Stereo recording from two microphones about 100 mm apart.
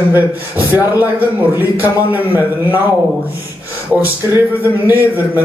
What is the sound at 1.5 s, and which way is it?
A man's voice, 20° right (ahead or behind).